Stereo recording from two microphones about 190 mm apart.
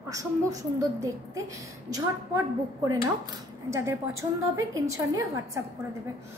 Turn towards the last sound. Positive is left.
turn(degrees=-15)  # may be behind; listen again after turning